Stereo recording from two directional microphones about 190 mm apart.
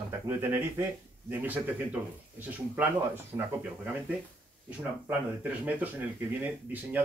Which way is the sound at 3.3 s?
15° right (ahead or behind).